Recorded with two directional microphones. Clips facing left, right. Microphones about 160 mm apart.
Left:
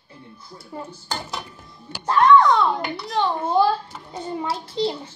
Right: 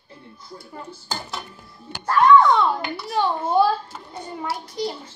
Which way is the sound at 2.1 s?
5° right (ahead or behind).